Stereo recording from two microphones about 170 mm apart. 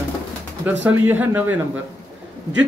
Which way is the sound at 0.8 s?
10° right (ahead or behind).